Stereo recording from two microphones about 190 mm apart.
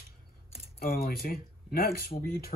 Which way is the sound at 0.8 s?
50° left (ahead or behind).